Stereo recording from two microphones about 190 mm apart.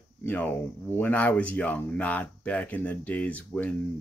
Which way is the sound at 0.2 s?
10° left (ahead or behind).